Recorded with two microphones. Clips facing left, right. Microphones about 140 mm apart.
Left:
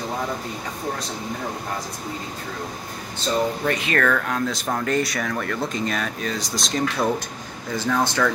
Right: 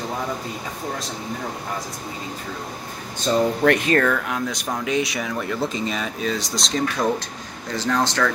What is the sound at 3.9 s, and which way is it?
Speech, 10° right (ahead or behind).